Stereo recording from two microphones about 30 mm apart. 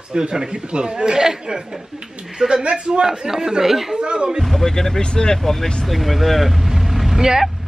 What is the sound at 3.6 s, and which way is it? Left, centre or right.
Speech, centre.